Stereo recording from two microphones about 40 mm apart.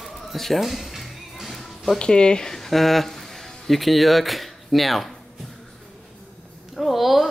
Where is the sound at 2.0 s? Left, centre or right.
Left.